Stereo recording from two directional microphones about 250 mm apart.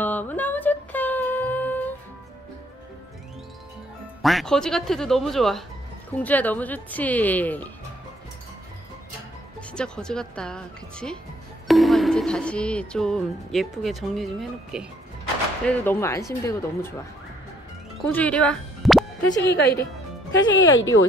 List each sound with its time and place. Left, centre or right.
0.0 s music: centre
4.2 s music: centre
6.2 s speech: centre
9.6 s music: centre
15.6 s speech: centre
18.0 s speech: centre
19.3 s speech: left